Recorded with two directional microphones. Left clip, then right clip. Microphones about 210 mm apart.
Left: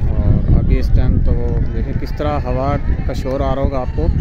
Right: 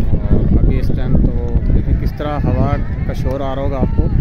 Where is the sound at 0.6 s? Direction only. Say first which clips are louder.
Right 1 dB; 15° left (ahead or behind).